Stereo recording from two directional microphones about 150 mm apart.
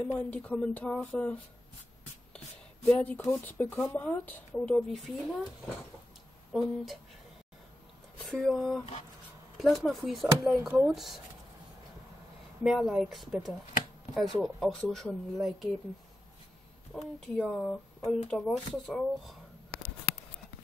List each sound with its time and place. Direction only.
0.0 s a woman's voice: 10° left (ahead or behind)
2.3 s a sound: 5° left (ahead or behind)
3.5 s a woman's voice: 15° left (ahead or behind)
6.5 s speech: centre (ahead or behind)
8.3 s speech: 5° left (ahead or behind)
12.6 s speech: centre (ahead or behind)
16.9 s a woman's voice: 5° left (ahead or behind)